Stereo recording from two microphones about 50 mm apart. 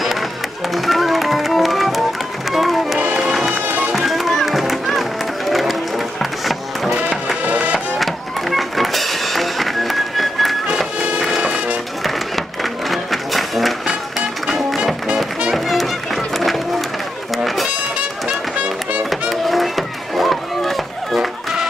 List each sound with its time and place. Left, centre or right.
0.7 s music: centre
3.6 s music: right
3.9 s music: centre
7.4 s music: right
8.0 s music: centre; by 11.8 s right
12.9 s music: centre
15.5 s music: centre
19.0 s chop: centre